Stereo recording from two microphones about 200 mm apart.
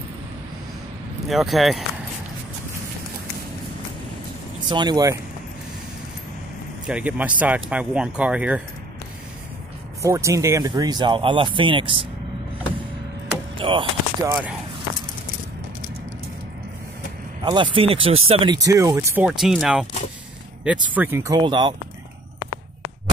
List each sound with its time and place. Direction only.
1.2 s speech: centre (ahead or behind)
4.6 s speech: 20° right (ahead or behind)
6.9 s speech: 5° right (ahead or behind)
10.0 s speech: 15° right (ahead or behind)
13.6 s speech: 25° right (ahead or behind)
17.5 s speech: 25° right (ahead or behind)